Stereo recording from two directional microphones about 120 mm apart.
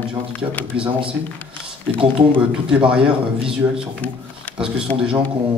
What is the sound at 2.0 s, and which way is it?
Speech, 45° right (ahead or behind).